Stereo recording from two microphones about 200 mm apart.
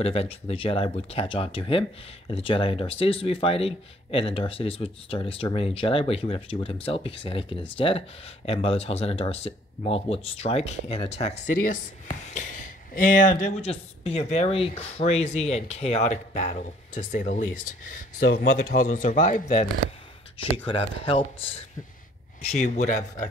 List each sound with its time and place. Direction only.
0.0 s speech: 30° left (ahead or behind)
20.5 s speech: 25° left (ahead or behind)